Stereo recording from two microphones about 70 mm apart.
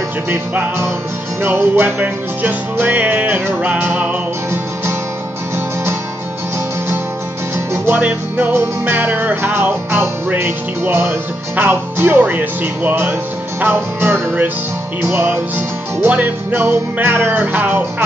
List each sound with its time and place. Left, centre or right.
0.3 s music: right
7.7 s music: right